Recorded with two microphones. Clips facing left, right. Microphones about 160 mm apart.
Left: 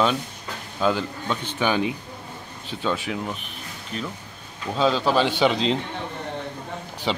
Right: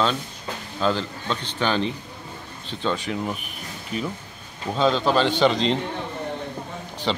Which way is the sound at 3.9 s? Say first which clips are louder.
Right 3 dB; 10° right (ahead or behind).